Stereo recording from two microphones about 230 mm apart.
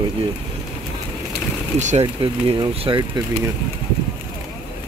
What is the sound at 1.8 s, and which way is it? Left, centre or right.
Speech, right.